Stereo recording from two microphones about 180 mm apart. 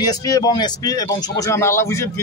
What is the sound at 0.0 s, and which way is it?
A man's voice, 20° left (ahead or behind).